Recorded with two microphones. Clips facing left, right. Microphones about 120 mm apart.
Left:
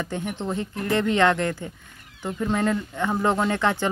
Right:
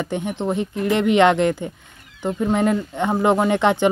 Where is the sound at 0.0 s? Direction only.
20° right (ahead or behind).